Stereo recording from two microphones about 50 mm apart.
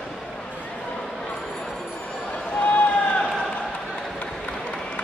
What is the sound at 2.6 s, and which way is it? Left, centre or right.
Run, left.